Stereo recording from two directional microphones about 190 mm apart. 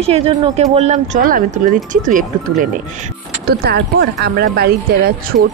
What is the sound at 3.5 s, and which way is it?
Speech, 60° right (ahead or behind).